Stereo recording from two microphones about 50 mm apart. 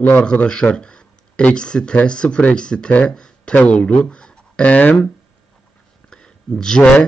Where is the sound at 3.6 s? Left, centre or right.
Left.